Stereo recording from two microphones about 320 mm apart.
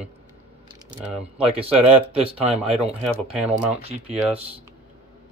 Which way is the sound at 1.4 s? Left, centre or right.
Centre.